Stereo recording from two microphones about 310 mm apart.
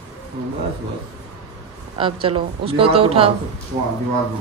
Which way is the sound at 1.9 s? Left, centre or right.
Centre.